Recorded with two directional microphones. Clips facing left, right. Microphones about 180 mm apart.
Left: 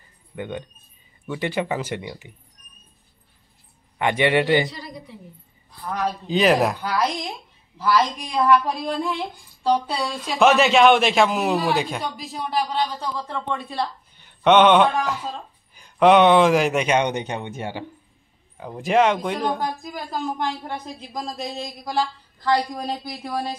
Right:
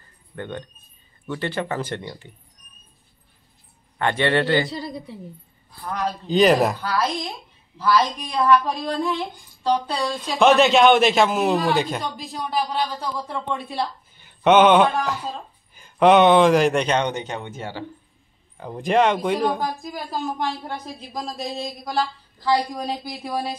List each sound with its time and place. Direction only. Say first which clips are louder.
0.4 s speech: left 1 dB; 10° left (ahead or behind)
4.0 s speech: left 1 dB; 15° left (ahead or behind)
4.6 s a woman's voice: right 5 dB; 30° right (ahead or behind)
5.9 s speech: even; 5° left (ahead or behind)
6.8 s speech: even; 15° left (ahead or behind)
18.6 s speech: even; centre (ahead or behind)